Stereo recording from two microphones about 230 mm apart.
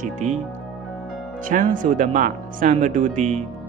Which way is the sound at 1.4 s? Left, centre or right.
Right.